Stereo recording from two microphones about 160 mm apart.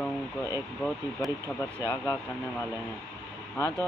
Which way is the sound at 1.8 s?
15° left (ahead or behind).